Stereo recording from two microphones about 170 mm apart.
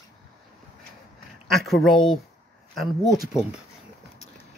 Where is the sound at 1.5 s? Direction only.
Centre (ahead or behind).